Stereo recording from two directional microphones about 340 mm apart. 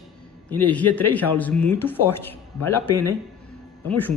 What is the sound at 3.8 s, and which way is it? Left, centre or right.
Speech, centre.